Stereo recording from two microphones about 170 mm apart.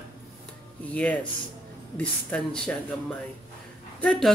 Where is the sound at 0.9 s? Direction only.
10° left (ahead or behind).